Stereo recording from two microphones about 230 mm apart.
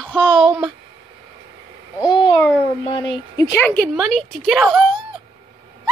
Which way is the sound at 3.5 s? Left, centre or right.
Centre.